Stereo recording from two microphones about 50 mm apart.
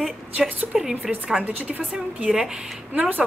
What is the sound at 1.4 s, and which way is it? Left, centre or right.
Speech, right.